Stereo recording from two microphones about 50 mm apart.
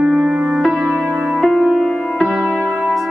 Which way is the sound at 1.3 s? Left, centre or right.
Centre.